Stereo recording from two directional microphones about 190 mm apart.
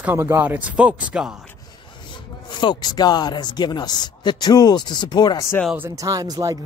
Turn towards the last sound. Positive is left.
turn(degrees=-20)  # may be behind; listen again after turning